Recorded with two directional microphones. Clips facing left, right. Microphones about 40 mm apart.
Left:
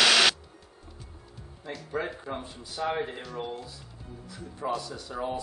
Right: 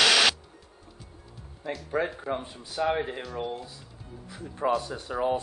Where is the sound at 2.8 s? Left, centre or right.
Centre.